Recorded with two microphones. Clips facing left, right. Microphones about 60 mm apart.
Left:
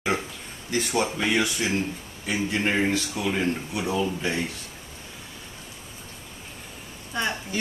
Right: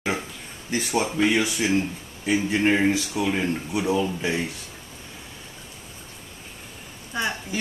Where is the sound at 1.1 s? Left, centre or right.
Centre.